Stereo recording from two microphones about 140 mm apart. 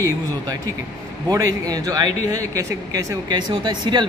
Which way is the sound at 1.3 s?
25° right (ahead or behind).